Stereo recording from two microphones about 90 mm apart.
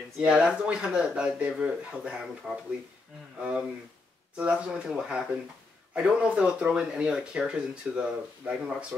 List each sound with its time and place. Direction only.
0.2 s speech: 10° right (ahead or behind)
2.4 s speech: centre (ahead or behind)
3.3 s speech: 10° right (ahead or behind)